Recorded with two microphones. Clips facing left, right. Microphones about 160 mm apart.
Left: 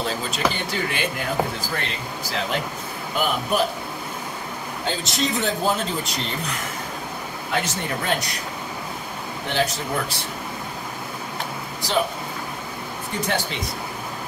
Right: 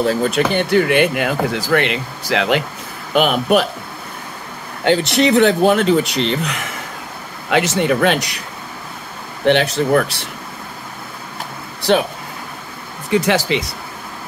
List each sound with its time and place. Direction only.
0.0 s speech: 55° right (ahead or behind); by 3.6 s 75° right (ahead or behind)
4.8 s speech: 70° right (ahead or behind)
9.5 s speech: 70° right (ahead or behind)
13.1 s speech: 90° right